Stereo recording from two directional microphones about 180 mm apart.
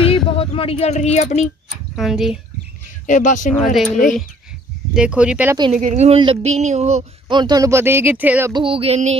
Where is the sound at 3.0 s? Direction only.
45° left (ahead or behind).